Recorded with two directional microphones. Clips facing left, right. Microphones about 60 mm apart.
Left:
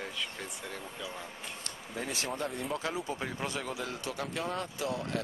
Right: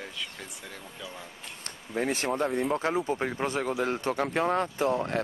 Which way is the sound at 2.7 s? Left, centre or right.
Right.